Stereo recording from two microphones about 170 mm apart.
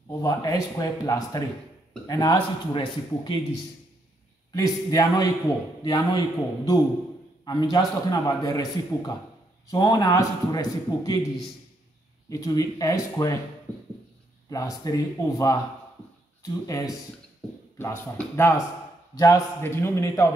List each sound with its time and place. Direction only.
0.2 s a man's voice: 20° left (ahead or behind)
4.5 s a man's voice: 20° left (ahead or behind)
12.3 s a man's voice: 20° left (ahead or behind)
14.5 s a man's voice: 20° left (ahead or behind)